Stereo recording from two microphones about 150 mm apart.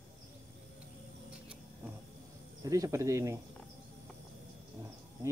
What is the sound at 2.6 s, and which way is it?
Speech, 25° right (ahead or behind).